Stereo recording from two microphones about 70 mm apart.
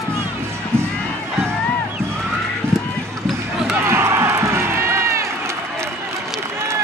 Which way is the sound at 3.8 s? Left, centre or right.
Right.